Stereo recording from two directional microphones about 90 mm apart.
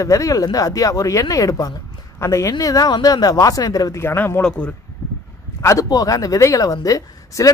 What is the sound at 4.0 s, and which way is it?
Speech, 25° left (ahead or behind).